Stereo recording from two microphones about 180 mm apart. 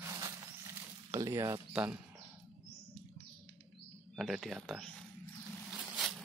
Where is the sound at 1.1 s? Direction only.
15° right (ahead or behind).